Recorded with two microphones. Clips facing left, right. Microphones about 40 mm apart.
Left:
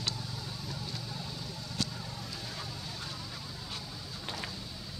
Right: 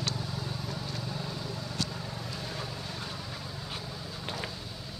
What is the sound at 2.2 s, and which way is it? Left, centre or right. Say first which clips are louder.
Boat: right 4 dB; centre.